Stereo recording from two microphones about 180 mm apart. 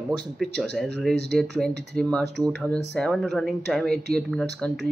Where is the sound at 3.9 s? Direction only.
65° right (ahead or behind).